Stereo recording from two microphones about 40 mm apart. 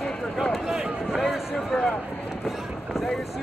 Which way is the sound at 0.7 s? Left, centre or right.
Centre.